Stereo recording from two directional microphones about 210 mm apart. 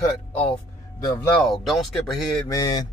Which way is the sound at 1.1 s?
10° left (ahead or behind).